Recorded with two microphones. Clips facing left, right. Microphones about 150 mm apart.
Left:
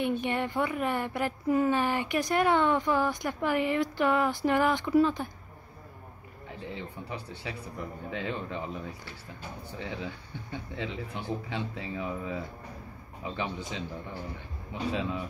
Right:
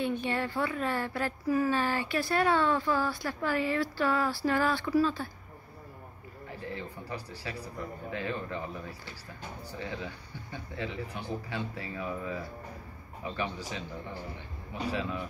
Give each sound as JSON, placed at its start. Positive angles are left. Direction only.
{"t": 0.2, "sound": "speech", "side_deg": 20}
{"t": 6.7, "sound": "a man's voice", "side_deg": 20}